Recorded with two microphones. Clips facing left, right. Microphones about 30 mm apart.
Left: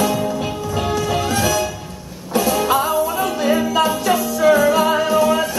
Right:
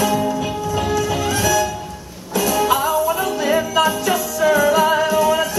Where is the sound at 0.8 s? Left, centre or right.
Left.